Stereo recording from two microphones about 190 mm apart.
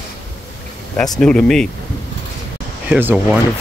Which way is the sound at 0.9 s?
5° left (ahead or behind).